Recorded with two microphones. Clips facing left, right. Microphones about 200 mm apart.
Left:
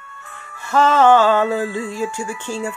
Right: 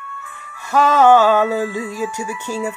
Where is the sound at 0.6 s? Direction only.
15° right (ahead or behind).